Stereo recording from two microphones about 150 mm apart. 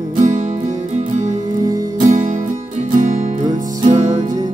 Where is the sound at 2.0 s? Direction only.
60° right (ahead or behind).